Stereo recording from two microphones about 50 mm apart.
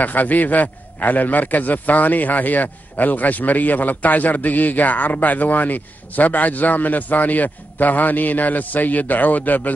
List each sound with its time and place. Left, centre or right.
0.0 s a man's voice: left